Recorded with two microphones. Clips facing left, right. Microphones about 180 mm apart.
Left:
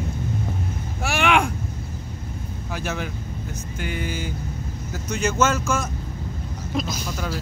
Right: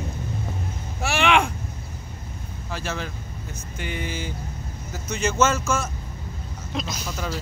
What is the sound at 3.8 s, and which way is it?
Speech, 5° left (ahead or behind).